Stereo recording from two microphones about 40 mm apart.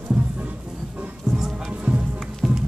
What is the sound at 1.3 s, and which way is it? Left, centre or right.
Music, right.